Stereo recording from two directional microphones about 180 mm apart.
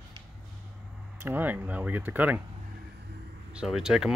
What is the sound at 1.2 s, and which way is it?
Speech, 10° right (ahead or behind).